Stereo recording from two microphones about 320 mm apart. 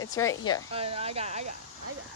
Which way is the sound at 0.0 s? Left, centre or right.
Centre.